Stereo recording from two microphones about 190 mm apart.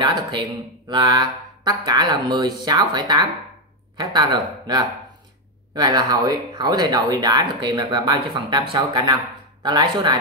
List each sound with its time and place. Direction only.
0.0 s speech: 25° right (ahead or behind)